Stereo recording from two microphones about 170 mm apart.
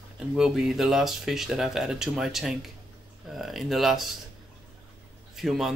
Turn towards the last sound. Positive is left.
turn(degrees=0)  # may be behind; listen again after turning